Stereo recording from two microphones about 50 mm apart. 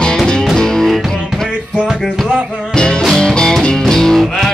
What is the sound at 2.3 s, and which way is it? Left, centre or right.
Music, centre.